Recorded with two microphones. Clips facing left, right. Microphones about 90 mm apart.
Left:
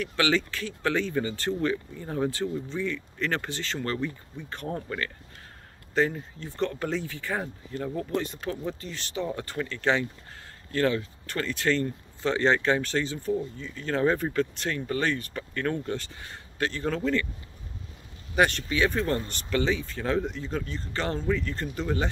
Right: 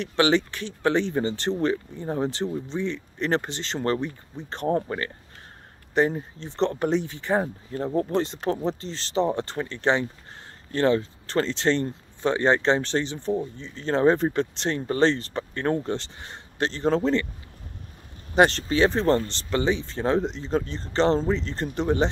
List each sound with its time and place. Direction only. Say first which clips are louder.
0.0 s speech: right 4 dB; 25° right (ahead or behind)
7.9 s speech: right 6 dB; 40° right (ahead or behind)
8.2 s speech: right 6 dB; 30° right (ahead or behind)
18.3 s speech: right 5 dB; 35° right (ahead or behind)